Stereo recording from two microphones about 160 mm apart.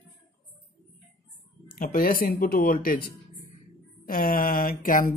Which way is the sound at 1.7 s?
60° left (ahead or behind).